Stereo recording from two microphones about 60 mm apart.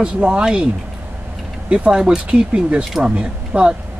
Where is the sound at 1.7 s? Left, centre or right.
Centre.